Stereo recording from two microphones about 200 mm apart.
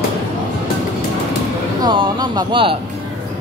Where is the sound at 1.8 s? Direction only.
20° right (ahead or behind).